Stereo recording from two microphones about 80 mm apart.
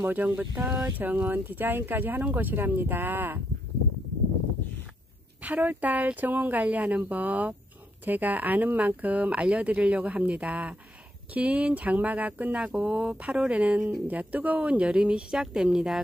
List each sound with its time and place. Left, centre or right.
0.0 s speech: right
5.4 s speech: centre